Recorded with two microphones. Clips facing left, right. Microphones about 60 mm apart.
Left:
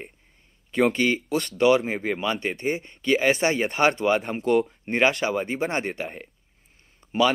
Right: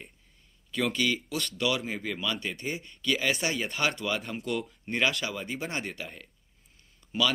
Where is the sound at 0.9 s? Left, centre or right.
Left.